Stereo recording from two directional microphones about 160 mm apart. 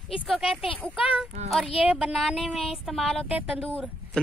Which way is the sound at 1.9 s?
5° right (ahead or behind).